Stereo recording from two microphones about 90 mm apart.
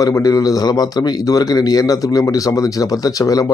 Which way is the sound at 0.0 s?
40° left (ahead or behind).